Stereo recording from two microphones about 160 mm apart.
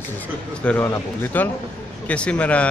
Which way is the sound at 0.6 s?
10° left (ahead or behind).